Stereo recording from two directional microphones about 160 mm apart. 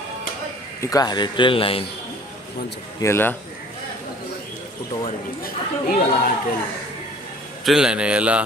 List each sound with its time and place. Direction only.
0.7 s a man's voice: 20° left (ahead or behind)
3.0 s speech: 15° left (ahead or behind)
5.0 s speech: 65° left (ahead or behind)
7.6 s a man's voice: 5° right (ahead or behind)